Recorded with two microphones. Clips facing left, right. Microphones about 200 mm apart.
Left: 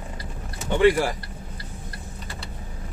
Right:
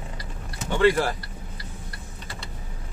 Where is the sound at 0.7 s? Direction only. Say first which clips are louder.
Left 2 dB; 15° left (ahead or behind).